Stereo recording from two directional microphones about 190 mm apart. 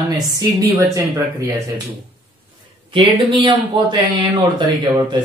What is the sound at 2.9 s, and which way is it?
Speech, 25° right (ahead or behind).